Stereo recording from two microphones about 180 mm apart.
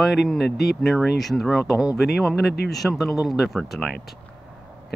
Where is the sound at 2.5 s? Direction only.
65° left (ahead or behind).